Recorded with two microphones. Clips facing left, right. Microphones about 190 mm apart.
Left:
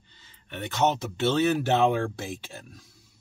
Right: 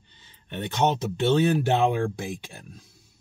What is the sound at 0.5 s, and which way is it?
Speech, 15° right (ahead or behind).